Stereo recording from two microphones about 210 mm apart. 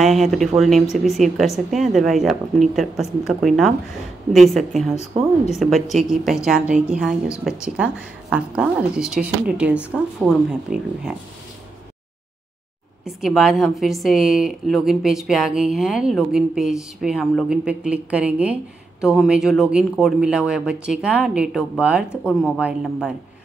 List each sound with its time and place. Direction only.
0.0 s a woman's voice: centre (ahead or behind)
5.1 s speech: 30° right (ahead or behind)
5.6 s a woman's voice: centre (ahead or behind)
13.0 s a woman's voice: centre (ahead or behind)